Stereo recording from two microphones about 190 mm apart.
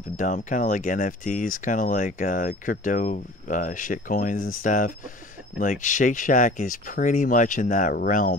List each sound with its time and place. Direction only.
0.2 s speech: 45° left (ahead or behind)